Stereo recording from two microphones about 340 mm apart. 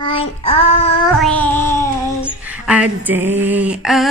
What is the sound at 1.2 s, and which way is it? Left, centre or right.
Child singing, centre.